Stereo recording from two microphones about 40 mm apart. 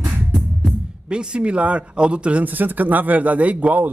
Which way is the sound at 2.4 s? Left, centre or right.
Right.